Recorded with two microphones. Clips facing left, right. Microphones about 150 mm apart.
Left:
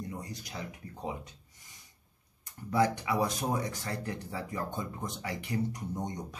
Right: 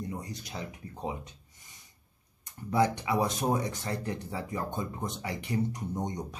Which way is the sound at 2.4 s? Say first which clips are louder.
Right 1 dB; 20° right (ahead or behind).